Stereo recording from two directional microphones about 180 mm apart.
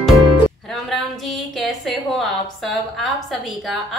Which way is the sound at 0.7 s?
Centre (ahead or behind).